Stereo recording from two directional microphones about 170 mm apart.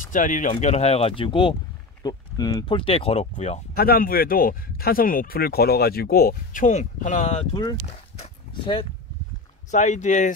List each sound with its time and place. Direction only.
0.1 s speech: 50° left (ahead or behind)
3.7 s speech: 60° left (ahead or behind); by 7.6 s 35° left (ahead or behind)
7.8 s a sound: 35° left (ahead or behind)
9.7 s speech: 45° left (ahead or behind)